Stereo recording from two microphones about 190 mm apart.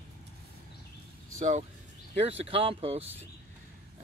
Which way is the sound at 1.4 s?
40° right (ahead or behind).